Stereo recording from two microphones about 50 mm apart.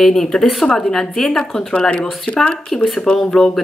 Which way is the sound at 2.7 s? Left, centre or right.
Centre.